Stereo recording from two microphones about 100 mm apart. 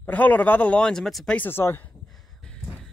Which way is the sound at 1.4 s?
25° left (ahead or behind).